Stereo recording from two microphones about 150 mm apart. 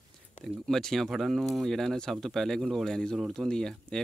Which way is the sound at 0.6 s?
Centre (ahead or behind).